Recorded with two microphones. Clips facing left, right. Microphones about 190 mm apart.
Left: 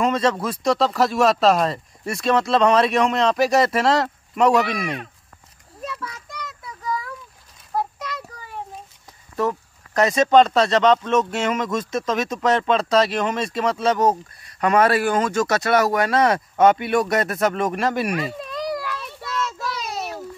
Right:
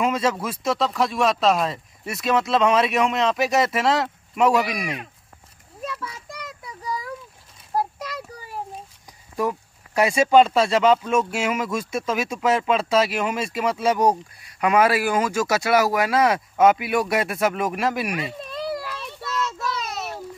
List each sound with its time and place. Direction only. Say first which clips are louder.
0.0 s speech: left 2 dB; 5° right (ahead or behind)
6.0 s child singing: left 1 dB; 30° right (ahead or behind)
6.8 s a sound: left 3 dB; 35° right (ahead or behind)
9.4 s speech: left 2 dB; 10° right (ahead or behind)